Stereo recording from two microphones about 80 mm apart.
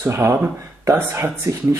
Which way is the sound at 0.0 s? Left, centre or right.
Right.